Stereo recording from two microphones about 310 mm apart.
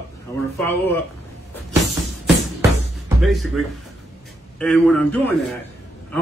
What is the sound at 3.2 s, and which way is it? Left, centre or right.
A man's voice, centre.